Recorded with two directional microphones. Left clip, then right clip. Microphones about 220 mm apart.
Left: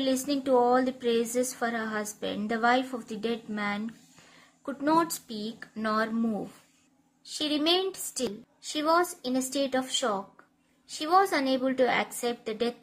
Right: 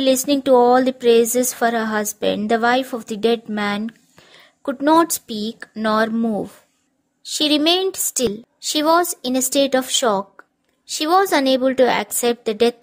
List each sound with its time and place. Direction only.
0.0 s speech: 40° right (ahead or behind)